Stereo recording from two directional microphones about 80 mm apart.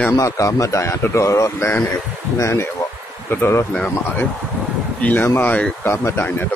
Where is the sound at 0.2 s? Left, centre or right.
Left.